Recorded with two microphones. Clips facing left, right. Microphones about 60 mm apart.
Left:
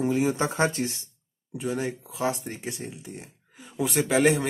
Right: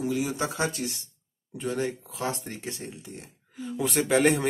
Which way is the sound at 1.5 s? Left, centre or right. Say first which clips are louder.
Even; centre.